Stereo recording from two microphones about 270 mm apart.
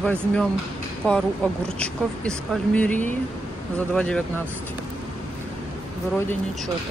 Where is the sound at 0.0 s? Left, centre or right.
Centre.